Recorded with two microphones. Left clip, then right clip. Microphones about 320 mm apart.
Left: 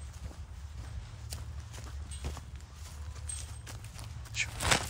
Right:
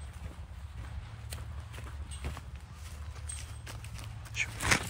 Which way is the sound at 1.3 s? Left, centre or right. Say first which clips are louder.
Even; centre.